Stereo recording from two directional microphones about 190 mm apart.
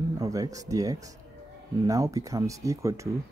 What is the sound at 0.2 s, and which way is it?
Speech, 20° right (ahead or behind).